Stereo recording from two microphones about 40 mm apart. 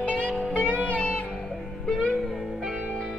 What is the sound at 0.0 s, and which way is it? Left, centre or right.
Music, left.